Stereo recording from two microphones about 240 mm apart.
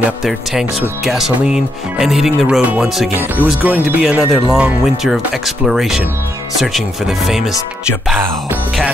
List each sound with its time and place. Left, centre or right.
0.2 s speech: centre